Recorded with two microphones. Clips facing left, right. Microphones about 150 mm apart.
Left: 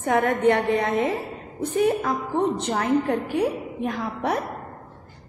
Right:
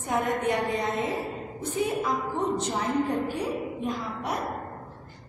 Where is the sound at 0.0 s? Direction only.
65° left (ahead or behind).